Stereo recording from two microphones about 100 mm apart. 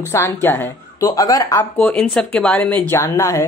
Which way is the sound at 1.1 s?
35° left (ahead or behind).